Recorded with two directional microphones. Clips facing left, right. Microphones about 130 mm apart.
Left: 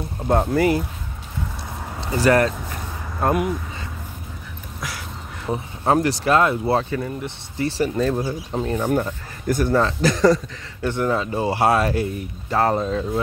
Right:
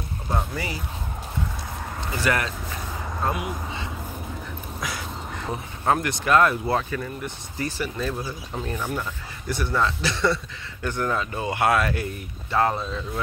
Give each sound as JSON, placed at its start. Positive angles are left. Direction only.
{"t": 0.3, "sound": "speech", "side_deg": 55}
{"t": 2.0, "sound": "speech", "side_deg": 35}
{"t": 3.2, "sound": "speech", "side_deg": 50}
{"t": 4.7, "sound": "duck", "side_deg": 0}
{"t": 5.9, "sound": "speech", "side_deg": 30}
{"t": 8.8, "sound": "speech", "side_deg": 45}
{"t": 10.9, "sound": "speech", "side_deg": 25}